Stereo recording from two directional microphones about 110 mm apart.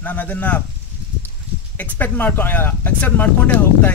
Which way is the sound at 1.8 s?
15° left (ahead or behind).